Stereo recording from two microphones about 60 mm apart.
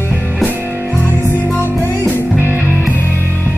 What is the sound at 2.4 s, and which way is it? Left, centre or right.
Music, right.